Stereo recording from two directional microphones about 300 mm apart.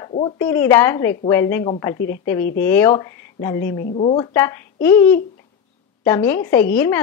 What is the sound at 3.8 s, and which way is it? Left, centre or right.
A woman's voice, left.